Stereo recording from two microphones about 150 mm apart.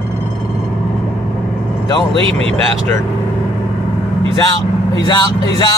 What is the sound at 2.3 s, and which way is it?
Speech, 40° right (ahead or behind).